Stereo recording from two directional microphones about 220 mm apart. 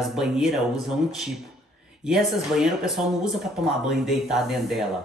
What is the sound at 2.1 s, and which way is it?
Speech, centre (ahead or behind).